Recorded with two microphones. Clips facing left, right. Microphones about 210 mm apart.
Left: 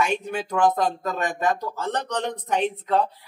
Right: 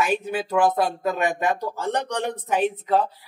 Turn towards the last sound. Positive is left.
turn(degrees=-5)  # may be behind; listen again after turning